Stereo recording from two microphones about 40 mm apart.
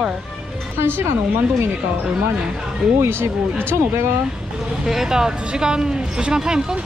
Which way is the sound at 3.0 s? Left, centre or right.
Right.